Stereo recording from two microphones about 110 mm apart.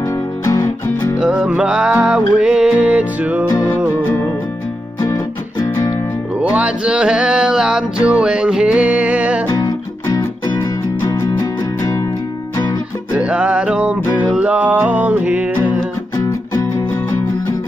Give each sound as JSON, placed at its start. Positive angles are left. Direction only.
{"t": 0.5, "sound": "music", "side_deg": 30}
{"t": 1.2, "sound": "music", "side_deg": -15}
{"t": 3.4, "sound": "music", "side_deg": 35}
{"t": 5.0, "sound": "music", "side_deg": 30}
{"t": 6.5, "sound": "music", "side_deg": -10}
{"t": 9.5, "sound": "music", "side_deg": 30}
{"t": 13.1, "sound": "music", "side_deg": -10}
{"t": 16.2, "sound": "music", "side_deg": 30}